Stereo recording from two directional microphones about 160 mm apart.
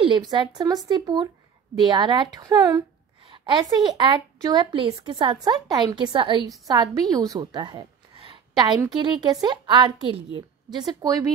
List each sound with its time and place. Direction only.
0.3 s a woman's voice: 25° right (ahead or behind)